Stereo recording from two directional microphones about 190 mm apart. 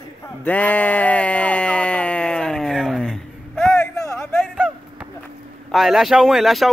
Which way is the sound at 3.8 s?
15° left (ahead or behind).